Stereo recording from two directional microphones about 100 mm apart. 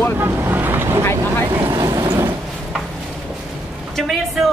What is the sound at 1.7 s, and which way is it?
Vehicle, 35° right (ahead or behind).